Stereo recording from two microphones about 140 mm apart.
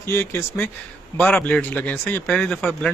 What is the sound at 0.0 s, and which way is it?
Speech, 20° left (ahead or behind).